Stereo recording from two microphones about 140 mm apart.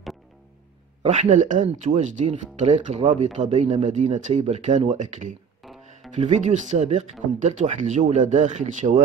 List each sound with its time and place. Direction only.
1.0 s speech: 55° right (ahead or behind)
5.6 s music: centre (ahead or behind)
6.3 s speech: 60° right (ahead or behind)